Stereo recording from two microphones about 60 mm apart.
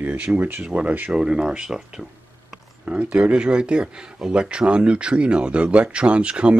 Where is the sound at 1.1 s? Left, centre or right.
Centre.